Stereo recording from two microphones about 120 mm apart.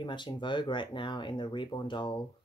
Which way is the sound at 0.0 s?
40° left (ahead or behind).